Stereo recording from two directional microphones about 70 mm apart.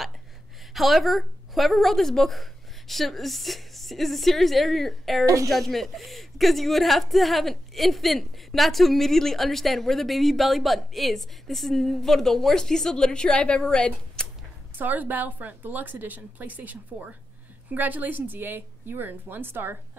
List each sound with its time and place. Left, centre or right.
0.7 s speech: centre
5.2 s a woman's voice: right
5.5 s speech: centre
14.8 s a woman's voice: right